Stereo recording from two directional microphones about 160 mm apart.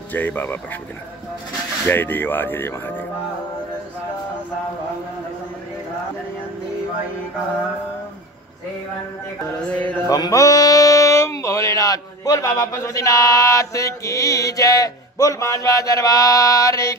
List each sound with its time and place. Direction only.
0.1 s speech: 10° left (ahead or behind)
1.9 s speech: 10° left (ahead or behind)
9.7 s speech: 10° left (ahead or behind)
10.0 s speech: 20° left (ahead or behind)